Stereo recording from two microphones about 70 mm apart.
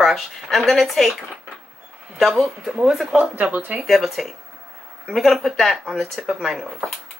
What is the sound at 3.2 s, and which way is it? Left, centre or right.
Speech, right.